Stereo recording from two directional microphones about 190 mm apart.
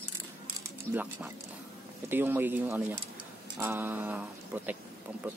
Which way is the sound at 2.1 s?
10° right (ahead or behind).